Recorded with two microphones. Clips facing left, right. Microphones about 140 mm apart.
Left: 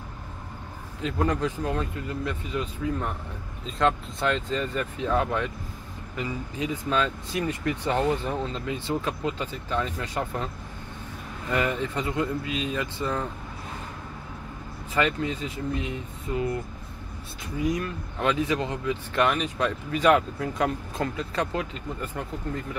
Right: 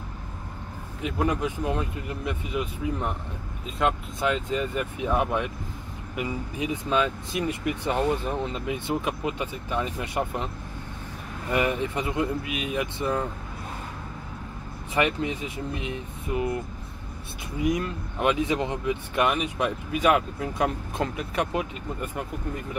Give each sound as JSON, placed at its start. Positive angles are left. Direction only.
{"t": 1.0, "sound": "speech", "side_deg": -15}
{"t": 11.5, "sound": "speech", "side_deg": -15}
{"t": 15.0, "sound": "speech", "side_deg": -20}
{"t": 17.6, "sound": "speech", "side_deg": -20}